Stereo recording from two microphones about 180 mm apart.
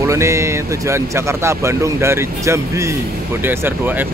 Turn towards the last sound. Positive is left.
turn(degrees=-10)  # may be behind; listen again after turning